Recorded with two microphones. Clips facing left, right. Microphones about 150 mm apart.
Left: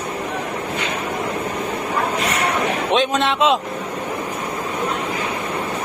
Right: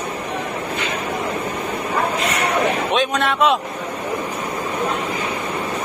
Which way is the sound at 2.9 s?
25° left (ahead or behind).